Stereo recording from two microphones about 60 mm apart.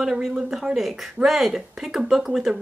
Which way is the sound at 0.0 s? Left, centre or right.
Centre.